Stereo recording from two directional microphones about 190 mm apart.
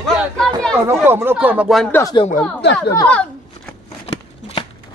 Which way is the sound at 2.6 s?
60° left (ahead or behind).